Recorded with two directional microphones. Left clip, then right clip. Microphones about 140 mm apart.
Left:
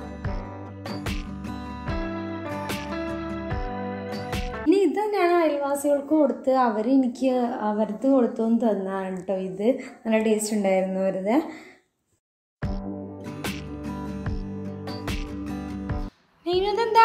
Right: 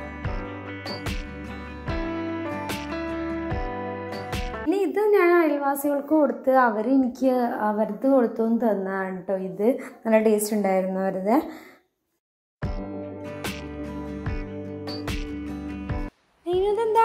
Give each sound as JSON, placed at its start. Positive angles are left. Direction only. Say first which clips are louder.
{"t": 1.9, "sound": "music", "louder": "right 3 dB", "side_deg": 0}
{"t": 4.9, "sound": "a woman's voice", "louder": "right 3 dB", "side_deg": -15}
{"t": 7.5, "sound": "a woman's voice", "louder": "right 1 dB", "side_deg": -25}
{"t": 13.4, "sound": "music", "louder": "left 2 dB", "side_deg": 0}
{"t": 16.6, "sound": "child singing", "louder": "left 1 dB", "side_deg": 0}